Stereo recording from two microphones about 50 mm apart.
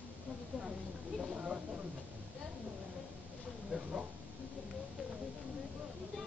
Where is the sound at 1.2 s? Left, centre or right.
Right.